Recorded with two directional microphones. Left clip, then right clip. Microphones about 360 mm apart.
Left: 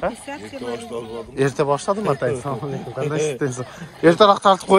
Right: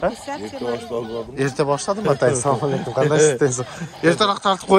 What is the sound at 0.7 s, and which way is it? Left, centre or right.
Speech, right.